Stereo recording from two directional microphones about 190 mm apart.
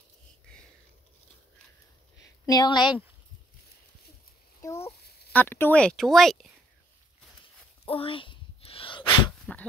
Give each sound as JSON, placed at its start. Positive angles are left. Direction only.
{"t": 2.4, "sound": "a woman's voice", "side_deg": 20}
{"t": 4.6, "sound": "speech", "side_deg": 15}
{"t": 7.8, "sound": "dog", "side_deg": 30}